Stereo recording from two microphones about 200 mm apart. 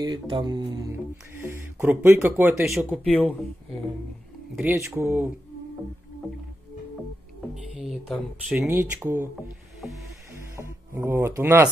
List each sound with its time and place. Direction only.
0.0 s speech: 20° right (ahead or behind)
3.0 s speech: 5° left (ahead or behind)
4.6 s speech: 10° right (ahead or behind)
7.7 s a sound: centre (ahead or behind)
8.6 s speech: 10° right (ahead or behind)
10.3 s music: 15° right (ahead or behind)